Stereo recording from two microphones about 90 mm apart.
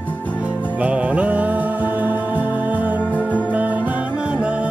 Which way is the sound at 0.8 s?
15° right (ahead or behind).